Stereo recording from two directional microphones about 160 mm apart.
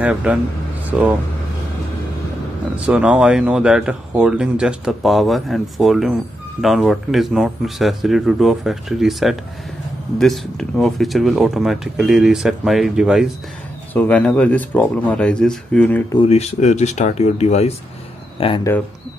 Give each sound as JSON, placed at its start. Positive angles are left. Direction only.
{"t": 0.0, "sound": "speech", "side_deg": -10}
{"t": 2.8, "sound": "speech", "side_deg": -5}
{"t": 13.9, "sound": "speech", "side_deg": 10}
{"t": 16.3, "sound": "speech", "side_deg": 45}